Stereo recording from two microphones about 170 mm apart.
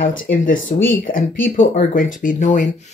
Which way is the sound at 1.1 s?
55° left (ahead or behind).